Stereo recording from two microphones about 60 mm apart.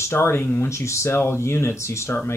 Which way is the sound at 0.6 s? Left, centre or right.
Left.